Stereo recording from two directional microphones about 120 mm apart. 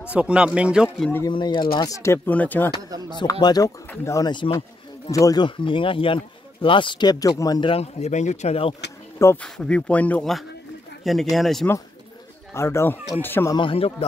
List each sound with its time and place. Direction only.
0.1 s speech: 10° right (ahead or behind)
1.3 s speech: 40° left (ahead or behind)
2.0 s speech: 25° left (ahead or behind)
3.2 s speech: 35° left (ahead or behind)
3.9 s speech: 25° left (ahead or behind)
4.3 s a sound: 40° left (ahead or behind)
5.1 s speech: 25° left (ahead or behind)
5.4 s speech: 45° left (ahead or behind)
7.6 s speech: 55° left (ahead or behind)
9.4 s speech: 10° left (ahead or behind)
11.3 s speech: centre (ahead or behind)
12.5 s speech: 20° left (ahead or behind)
13.6 s speech: 50° left (ahead or behind)